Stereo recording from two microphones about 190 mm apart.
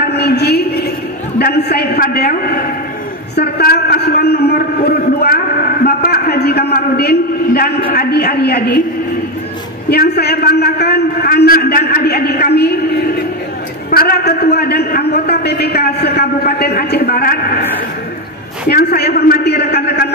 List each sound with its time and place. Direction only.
0.0 s a sound: 60° left (ahead or behind)
1.4 s a man's voice: 55° left (ahead or behind)
3.3 s a sound: 55° left (ahead or behind)
5.9 s a man's voice: 50° left (ahead or behind)
9.8 s a man's voice: 55° left (ahead or behind)
13.8 s a man's voice: 50° left (ahead or behind)
18.7 s a man's voice: 55° left (ahead or behind)